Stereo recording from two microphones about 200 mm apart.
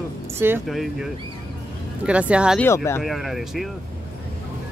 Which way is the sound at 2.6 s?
15° left (ahead or behind).